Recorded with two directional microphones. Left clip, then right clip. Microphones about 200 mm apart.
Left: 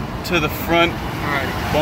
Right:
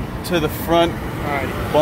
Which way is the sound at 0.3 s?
5° right (ahead or behind).